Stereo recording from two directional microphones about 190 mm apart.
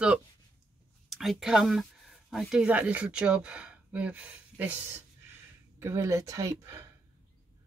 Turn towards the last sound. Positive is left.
turn(degrees=-15)  # may be behind; listen again after turning